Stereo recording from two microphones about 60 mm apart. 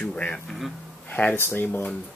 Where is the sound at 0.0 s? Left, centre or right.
Left.